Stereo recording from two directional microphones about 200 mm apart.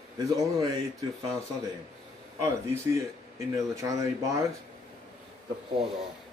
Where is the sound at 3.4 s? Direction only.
15° right (ahead or behind).